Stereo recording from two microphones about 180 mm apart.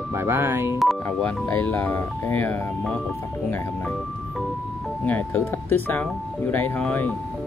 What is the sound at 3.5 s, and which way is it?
Speech, 15° left (ahead or behind).